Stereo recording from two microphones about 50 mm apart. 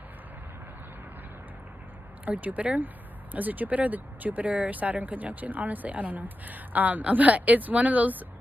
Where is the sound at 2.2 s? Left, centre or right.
Right.